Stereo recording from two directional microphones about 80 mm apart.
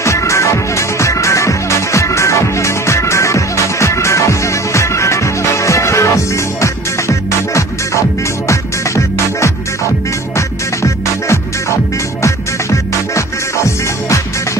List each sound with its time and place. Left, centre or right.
0.0 s music: left